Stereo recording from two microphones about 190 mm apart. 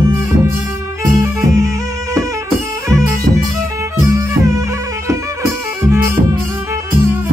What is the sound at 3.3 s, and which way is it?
Music, 55° right (ahead or behind).